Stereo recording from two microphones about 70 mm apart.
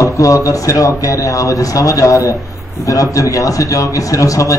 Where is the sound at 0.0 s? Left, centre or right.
Left.